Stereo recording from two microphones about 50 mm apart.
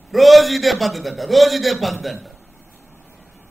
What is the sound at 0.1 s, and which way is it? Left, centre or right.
A man's voice, centre.